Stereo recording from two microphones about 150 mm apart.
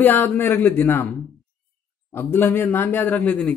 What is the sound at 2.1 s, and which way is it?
A man's voice, 15° left (ahead or behind).